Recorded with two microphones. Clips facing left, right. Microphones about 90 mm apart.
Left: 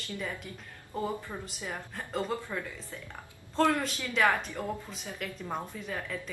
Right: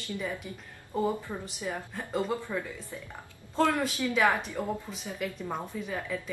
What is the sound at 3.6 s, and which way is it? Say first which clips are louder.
Speech: right 1 dB; 20° right (ahead or behind).